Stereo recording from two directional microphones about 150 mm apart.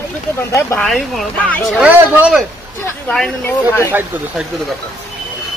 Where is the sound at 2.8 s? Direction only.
5° left (ahead or behind).